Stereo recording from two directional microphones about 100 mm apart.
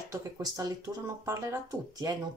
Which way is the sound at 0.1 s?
35° right (ahead or behind).